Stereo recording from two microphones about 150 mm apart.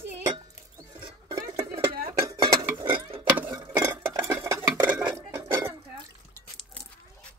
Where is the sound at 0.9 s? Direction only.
35° right (ahead or behind).